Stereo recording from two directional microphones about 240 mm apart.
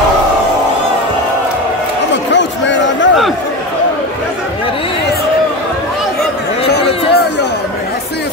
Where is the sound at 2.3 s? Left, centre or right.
Left.